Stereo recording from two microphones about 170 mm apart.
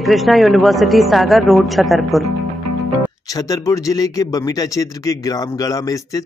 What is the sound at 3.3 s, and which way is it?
Speech, 20° left (ahead or behind).